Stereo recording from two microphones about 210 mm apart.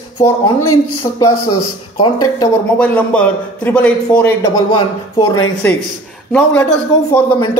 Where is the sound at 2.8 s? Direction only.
5° left (ahead or behind).